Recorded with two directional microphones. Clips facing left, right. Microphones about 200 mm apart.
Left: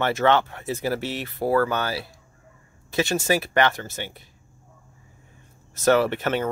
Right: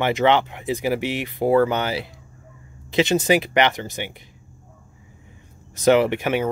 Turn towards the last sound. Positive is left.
turn(degrees=-15)  # may be behind; listen again after turning